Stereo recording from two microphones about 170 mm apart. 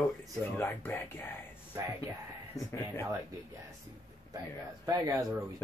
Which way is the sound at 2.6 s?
20° left (ahead or behind).